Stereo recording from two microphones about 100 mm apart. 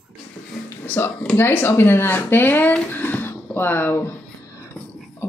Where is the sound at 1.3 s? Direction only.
20° left (ahead or behind).